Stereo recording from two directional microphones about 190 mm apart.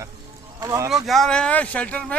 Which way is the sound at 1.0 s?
Centre (ahead or behind).